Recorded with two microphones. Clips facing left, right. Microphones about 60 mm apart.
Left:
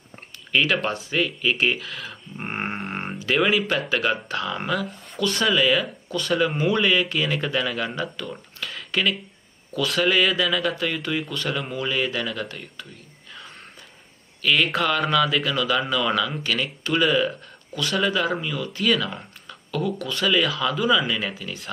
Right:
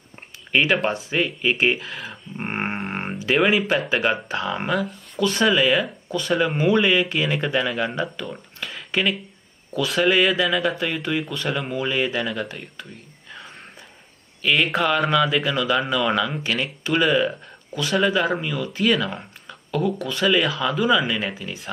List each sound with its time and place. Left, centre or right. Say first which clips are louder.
0.5 s speech: right 2 dB; centre
14.4 s speech: right 1 dB; centre